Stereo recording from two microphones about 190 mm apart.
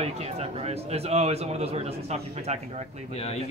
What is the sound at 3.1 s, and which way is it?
Speech, 30° left (ahead or behind).